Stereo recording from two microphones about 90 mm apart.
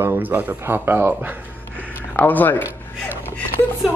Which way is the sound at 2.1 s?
20° left (ahead or behind).